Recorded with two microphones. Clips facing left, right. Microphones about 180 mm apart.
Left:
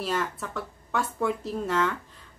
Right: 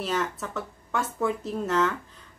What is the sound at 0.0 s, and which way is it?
Speech, centre (ahead or behind).